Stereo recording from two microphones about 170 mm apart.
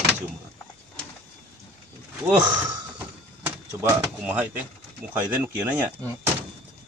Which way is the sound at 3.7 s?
10° right (ahead or behind).